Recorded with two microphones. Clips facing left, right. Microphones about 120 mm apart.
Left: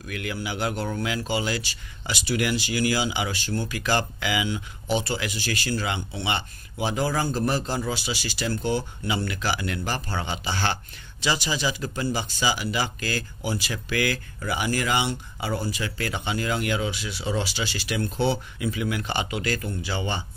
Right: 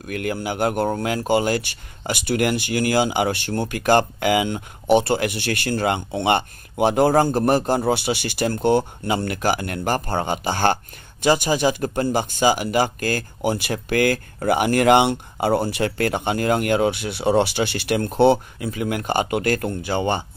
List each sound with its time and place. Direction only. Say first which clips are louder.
0.0 s speech: right 6 dB; 50° right (ahead or behind)
18.6 s speech: right 3 dB; 45° right (ahead or behind)